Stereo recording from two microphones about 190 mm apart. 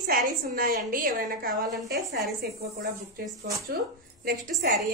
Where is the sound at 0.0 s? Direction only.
50° right (ahead or behind).